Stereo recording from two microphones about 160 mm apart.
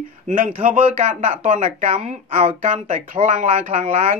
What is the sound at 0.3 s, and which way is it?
Speech, 50° right (ahead or behind).